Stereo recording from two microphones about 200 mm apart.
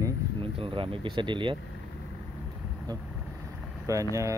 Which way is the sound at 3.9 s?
15° right (ahead or behind).